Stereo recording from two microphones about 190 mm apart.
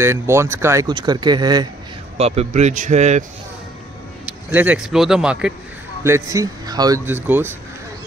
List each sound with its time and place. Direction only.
0.0 s speech: 15° right (ahead or behind)
2.1 s a man's voice: 35° right (ahead or behind)
4.3 s speech: 10° right (ahead or behind)
6.0 s speech: 15° right (ahead or behind)